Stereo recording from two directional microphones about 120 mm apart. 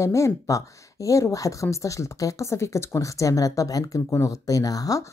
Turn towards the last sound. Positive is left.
turn(degrees=30)  # may be behind; listen again after turning